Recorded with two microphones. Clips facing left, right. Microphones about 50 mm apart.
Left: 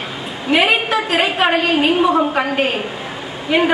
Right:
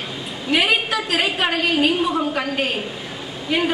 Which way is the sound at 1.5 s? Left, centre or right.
Left.